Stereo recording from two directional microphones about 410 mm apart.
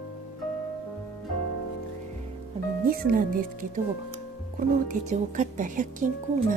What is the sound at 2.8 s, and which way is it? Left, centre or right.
Speech, right.